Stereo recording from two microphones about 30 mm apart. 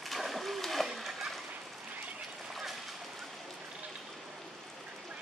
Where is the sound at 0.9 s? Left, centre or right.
Centre.